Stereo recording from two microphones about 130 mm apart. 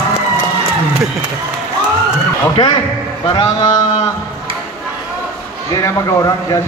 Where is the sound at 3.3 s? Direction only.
35° left (ahead or behind).